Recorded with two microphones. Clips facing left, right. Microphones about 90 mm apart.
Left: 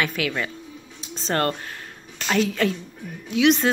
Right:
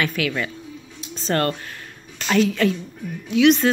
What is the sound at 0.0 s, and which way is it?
Speech, 25° left (ahead or behind).